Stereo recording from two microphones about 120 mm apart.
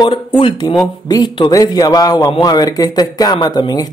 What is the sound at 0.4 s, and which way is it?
Speech, 45° left (ahead or behind).